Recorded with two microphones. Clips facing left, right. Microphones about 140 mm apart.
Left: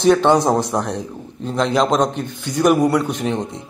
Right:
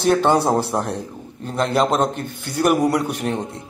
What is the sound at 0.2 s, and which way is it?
A man's voice, 5° right (ahead or behind).